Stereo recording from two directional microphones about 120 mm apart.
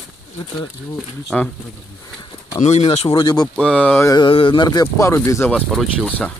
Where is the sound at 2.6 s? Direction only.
65° left (ahead or behind).